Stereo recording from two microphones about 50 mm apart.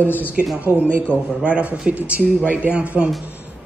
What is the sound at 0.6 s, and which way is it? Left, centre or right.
Speech, right.